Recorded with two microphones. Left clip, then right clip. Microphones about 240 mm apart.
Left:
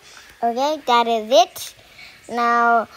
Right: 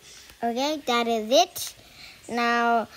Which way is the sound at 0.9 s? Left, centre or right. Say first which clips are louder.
Left 6 dB; right.